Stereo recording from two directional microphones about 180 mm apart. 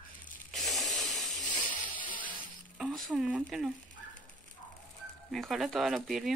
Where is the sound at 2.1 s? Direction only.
50° left (ahead or behind).